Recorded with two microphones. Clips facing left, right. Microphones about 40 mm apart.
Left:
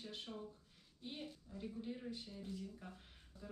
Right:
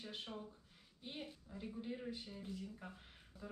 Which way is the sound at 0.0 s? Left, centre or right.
Centre.